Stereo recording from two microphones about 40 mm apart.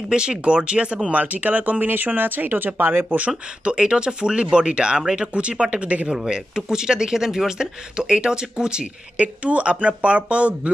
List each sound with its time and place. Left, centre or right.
0.1 s speech: right
1.1 s speech: right
3.2 s speech: right
5.3 s speech: right
6.1 s speech: centre
9.2 s speech: right